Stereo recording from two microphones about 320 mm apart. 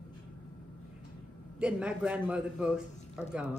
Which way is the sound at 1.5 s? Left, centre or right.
Centre.